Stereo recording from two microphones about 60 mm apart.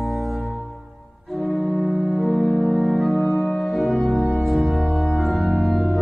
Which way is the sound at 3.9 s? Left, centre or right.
Centre.